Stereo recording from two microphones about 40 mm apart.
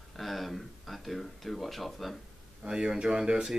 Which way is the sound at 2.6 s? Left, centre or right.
Right.